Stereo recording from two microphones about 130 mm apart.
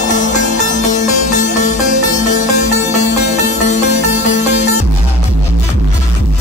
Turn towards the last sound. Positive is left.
turn(degrees=60)  # may be behind; listen again after turning